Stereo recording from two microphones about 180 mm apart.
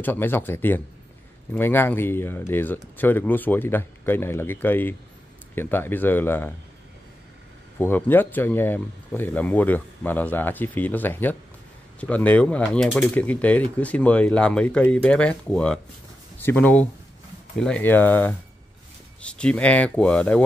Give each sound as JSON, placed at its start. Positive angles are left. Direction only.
{"t": 0.0, "sound": "speech", "side_deg": 10}
{"t": 7.8, "sound": "speech", "side_deg": 10}